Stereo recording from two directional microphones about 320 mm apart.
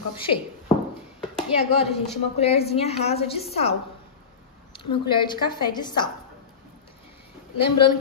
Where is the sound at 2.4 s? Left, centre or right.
Centre.